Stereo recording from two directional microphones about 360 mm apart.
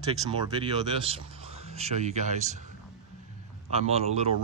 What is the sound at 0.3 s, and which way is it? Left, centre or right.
Speech, centre.